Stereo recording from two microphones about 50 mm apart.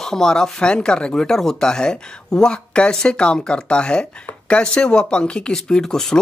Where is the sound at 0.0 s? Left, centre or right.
Centre.